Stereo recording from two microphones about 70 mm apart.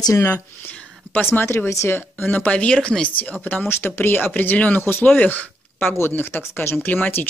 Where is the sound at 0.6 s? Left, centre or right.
Left.